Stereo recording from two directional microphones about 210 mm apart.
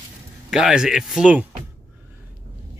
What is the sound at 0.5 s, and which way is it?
Speech, 5° right (ahead or behind).